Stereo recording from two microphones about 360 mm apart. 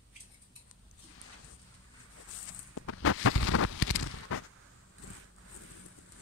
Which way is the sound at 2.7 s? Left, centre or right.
Left.